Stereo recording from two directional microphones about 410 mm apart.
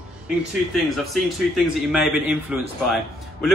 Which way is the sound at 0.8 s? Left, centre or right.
Centre.